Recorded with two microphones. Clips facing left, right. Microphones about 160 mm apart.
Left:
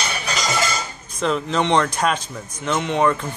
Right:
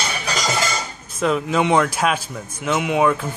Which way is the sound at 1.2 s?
5° right (ahead or behind).